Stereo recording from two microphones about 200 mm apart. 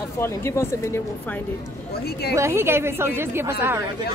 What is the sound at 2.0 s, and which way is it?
Speech, 55° left (ahead or behind).